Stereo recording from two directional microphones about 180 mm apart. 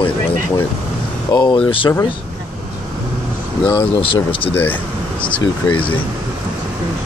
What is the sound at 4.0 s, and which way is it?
Speech, 30° left (ahead or behind).